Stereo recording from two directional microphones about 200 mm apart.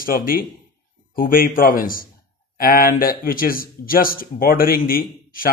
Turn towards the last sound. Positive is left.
turn(degrees=45)  # may be behind; listen again after turning